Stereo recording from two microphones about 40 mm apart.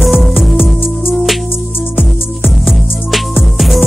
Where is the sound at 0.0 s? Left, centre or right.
Centre.